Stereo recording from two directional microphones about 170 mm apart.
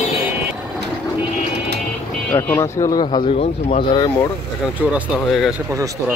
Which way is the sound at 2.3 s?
15° left (ahead or behind).